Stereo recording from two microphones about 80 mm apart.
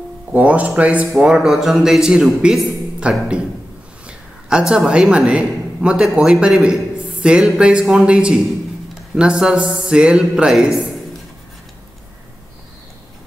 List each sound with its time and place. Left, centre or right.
0.3 s speech: centre
4.5 s speech: centre
6.6 s a sound: centre
7.4 s speech: centre